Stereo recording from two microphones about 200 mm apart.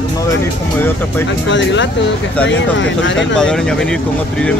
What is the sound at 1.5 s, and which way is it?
Speech, 65° left (ahead or behind).